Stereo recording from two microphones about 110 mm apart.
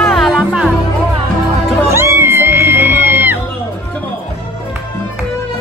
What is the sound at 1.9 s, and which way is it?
Crowd, 25° right (ahead or behind).